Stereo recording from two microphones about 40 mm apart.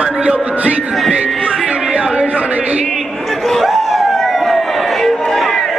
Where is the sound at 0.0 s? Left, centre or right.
Right.